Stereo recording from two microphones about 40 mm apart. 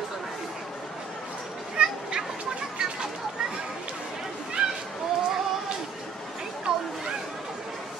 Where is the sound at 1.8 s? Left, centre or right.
Right.